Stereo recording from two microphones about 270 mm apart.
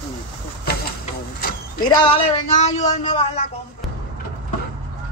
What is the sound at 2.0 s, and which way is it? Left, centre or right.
Speech, centre.